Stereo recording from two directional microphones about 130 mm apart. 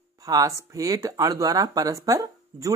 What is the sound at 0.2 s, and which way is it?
Speech, 25° right (ahead or behind).